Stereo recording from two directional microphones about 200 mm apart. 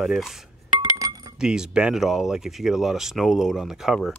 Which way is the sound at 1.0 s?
15° right (ahead or behind).